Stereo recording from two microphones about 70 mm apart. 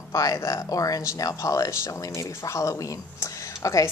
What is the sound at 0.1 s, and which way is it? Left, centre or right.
Speech, left.